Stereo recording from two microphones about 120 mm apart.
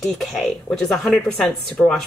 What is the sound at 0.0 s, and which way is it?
Speech, 5° left (ahead or behind).